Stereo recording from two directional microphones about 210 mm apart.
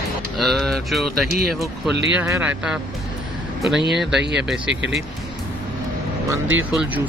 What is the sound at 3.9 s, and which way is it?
Speech, centre (ahead or behind).